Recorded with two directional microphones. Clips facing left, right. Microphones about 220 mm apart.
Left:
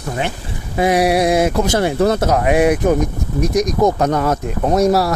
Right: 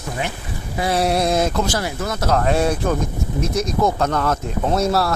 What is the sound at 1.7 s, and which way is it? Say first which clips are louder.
Speech: left 9 dB; 25° left (ahead or behind).